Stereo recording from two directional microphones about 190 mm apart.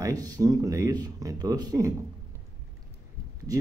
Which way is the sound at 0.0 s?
20° right (ahead or behind).